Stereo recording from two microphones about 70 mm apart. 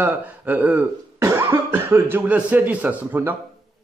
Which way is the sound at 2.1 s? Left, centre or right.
Right.